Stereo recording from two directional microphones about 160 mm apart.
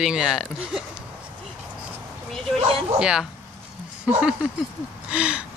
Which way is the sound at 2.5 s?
35° right (ahead or behind).